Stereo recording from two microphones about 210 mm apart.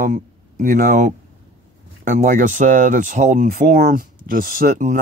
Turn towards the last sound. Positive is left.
turn(degrees=-35)  # may be behind; listen again after turning